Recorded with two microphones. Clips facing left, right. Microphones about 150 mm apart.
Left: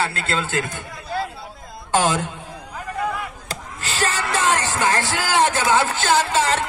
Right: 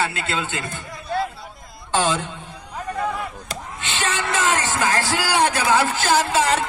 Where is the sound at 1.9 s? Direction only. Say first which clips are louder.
Left 2 dB; 10° left (ahead or behind).